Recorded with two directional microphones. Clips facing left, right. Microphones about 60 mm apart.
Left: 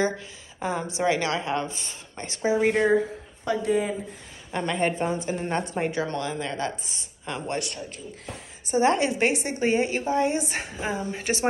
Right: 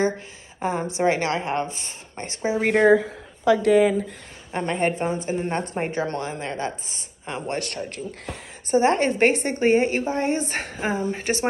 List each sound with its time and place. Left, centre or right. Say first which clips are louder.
0.6 s a woman's voice: right 3 dB; right
2.6 s speech: right 5 dB; right
3.4 s speech: right 7 dB; right
4.5 s a woman's voice: right 2 dB; right
7.5 s speech: right 3 dB; right
8.6 s a woman's voice: right 3 dB; right